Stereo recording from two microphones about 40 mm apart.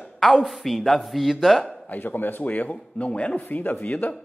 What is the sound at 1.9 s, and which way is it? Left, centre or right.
Speech, left.